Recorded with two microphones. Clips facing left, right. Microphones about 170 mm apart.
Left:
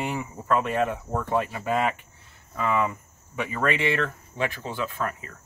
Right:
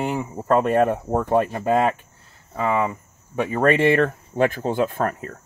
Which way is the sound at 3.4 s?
45° right (ahead or behind).